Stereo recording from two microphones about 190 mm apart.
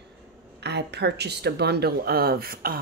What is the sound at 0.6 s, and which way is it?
A woman's voice, 60° right (ahead or behind).